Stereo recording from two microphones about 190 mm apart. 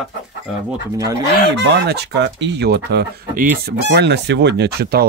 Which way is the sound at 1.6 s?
65° right (ahead or behind).